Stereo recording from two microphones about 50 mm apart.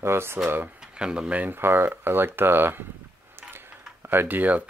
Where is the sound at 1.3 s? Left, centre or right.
Right.